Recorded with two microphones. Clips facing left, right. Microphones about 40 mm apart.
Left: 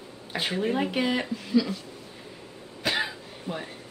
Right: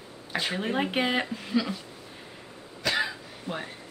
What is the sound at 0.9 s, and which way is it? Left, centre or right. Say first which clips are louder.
Speech: even; right.